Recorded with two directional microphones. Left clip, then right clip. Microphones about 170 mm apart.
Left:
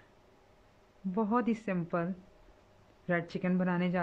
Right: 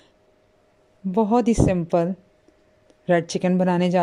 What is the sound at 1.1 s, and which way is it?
A woman's voice, 30° right (ahead or behind).